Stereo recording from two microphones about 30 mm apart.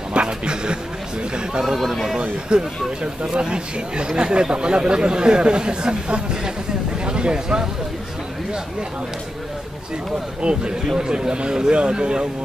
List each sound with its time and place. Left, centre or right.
0.1 s a sound: right
1.3 s a man's voice: right
1.8 s speech: centre
2.5 s speech: right
10.4 s a man's voice: right